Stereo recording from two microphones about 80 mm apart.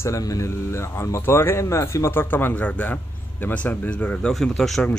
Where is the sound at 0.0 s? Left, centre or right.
Left; by 4.3 s centre.